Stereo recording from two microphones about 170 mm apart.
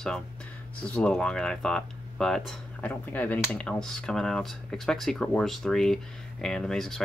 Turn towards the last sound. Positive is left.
turn(degrees=5)  # may be behind; listen again after turning